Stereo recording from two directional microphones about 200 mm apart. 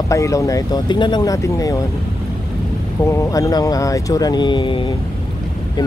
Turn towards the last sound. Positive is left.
turn(degrees=25)  # may be behind; listen again after turning